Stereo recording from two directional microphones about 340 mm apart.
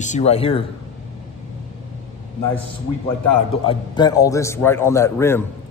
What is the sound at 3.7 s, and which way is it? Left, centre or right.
A man's voice, centre.